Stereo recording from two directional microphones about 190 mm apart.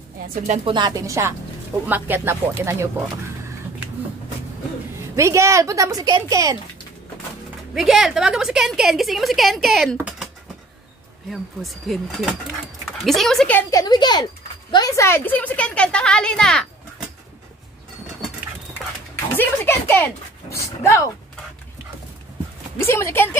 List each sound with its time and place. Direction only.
0.7 s a woman's voice: 25° right (ahead or behind)
5.1 s a woman's voice: 15° right (ahead or behind)
7.7 s a woman's voice: centre (ahead or behind)
11.2 s a woman's voice: centre (ahead or behind)
19.1 s speech: 10° left (ahead or behind)
22.8 s a woman's voice: 15° left (ahead or behind)